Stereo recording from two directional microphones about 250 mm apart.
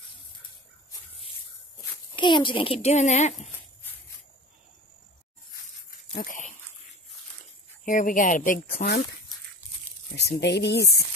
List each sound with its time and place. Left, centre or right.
2.1 s a child's voice: centre
6.1 s dog: left
7.8 s speech: left
10.1 s speech: left